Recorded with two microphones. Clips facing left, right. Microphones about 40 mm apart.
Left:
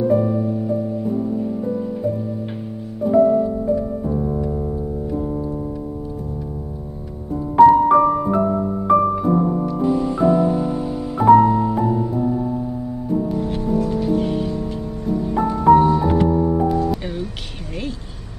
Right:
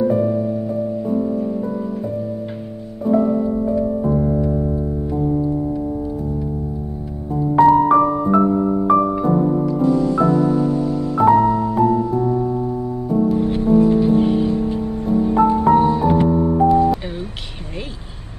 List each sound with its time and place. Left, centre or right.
0.0 s music: centre
3.0 s music: centre
5.1 s keyboard: centre
7.3 s music: centre
9.8 s music: centre
12.2 s keyboard: centre
13.4 s music: right